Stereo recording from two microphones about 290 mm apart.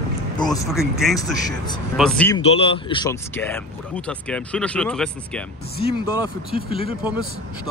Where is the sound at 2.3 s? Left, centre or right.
Centre.